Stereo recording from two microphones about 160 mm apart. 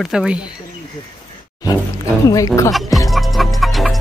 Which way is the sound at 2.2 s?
20° left (ahead or behind).